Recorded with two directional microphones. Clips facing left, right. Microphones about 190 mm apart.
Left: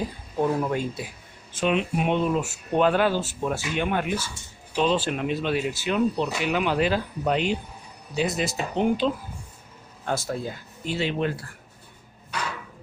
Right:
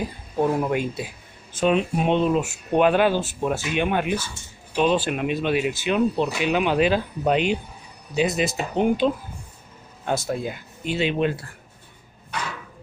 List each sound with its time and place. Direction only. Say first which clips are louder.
0.4 s speech: right 2 dB; 15° right (ahead or behind)
1.5 s speech: right 3 dB; 40° right (ahead or behind); by 11.3 s 20° right (ahead or behind)